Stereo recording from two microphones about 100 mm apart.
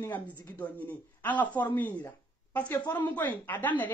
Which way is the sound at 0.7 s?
15° left (ahead or behind).